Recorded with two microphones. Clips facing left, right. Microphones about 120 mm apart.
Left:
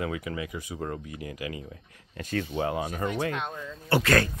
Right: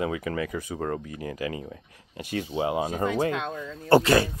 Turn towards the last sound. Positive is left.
turn(degrees=-20)  # may be behind; listen again after turning